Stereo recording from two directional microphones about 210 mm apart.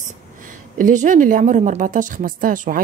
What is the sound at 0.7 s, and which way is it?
Speech, 40° right (ahead or behind).